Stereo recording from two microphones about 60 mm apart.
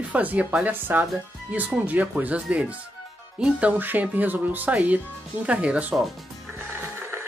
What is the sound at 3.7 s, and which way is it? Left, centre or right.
Speech, right.